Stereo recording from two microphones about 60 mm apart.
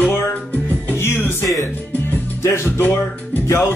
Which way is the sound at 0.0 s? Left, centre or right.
Left.